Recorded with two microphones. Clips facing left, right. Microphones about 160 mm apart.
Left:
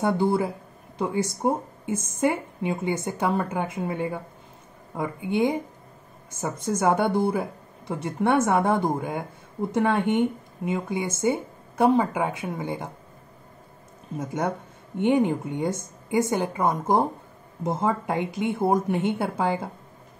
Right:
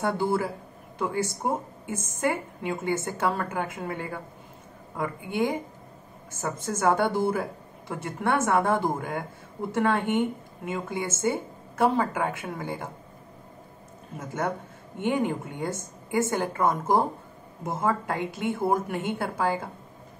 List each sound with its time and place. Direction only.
0.0 s a woman's voice: 20° left (ahead or behind)
14.1 s a woman's voice: 20° left (ahead or behind)